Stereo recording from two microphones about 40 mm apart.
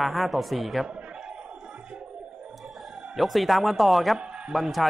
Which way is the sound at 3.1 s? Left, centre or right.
Centre.